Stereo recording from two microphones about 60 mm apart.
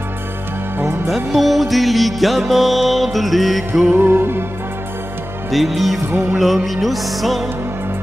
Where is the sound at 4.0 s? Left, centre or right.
Right.